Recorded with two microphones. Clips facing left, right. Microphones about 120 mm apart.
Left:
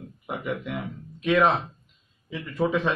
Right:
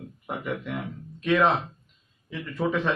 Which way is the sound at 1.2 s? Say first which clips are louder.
Left 1 dB; 10° left (ahead or behind).